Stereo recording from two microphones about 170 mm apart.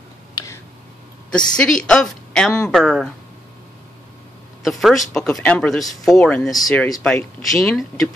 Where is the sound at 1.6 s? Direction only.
5° left (ahead or behind).